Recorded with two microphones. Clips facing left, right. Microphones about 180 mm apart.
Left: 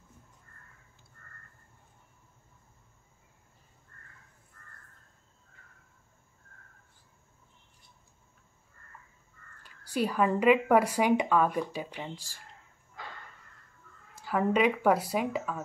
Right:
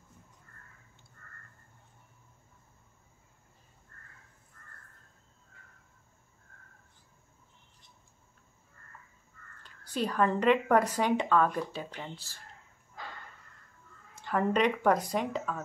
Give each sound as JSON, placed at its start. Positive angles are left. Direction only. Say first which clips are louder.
{"t": 9.6, "sound": "a woman's voice", "louder": "left 3 dB", "side_deg": 10}
{"t": 14.2, "sound": "a woman's voice", "louder": "left 1 dB", "side_deg": 5}